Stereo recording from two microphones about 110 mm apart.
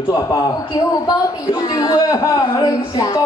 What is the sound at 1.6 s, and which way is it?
Speech, 35° left (ahead or behind).